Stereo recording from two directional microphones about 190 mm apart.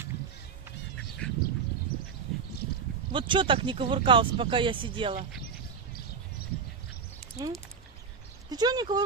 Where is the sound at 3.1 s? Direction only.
25° right (ahead or behind).